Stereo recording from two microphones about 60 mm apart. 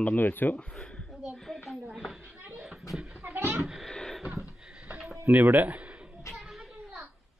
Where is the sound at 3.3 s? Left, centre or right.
Right.